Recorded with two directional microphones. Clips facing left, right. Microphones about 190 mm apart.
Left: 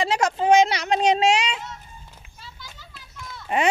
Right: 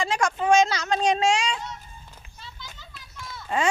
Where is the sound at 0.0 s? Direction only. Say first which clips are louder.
Left 3 dB; 25° left (ahead or behind).